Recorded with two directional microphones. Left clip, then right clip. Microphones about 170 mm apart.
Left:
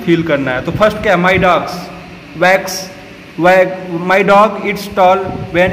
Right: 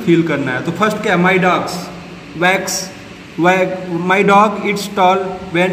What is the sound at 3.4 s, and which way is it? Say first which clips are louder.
A man's voice: left 4 dB; 10° left (ahead or behind).